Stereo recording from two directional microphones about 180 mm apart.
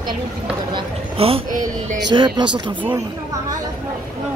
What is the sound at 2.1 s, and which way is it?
Speech, 25° right (ahead or behind).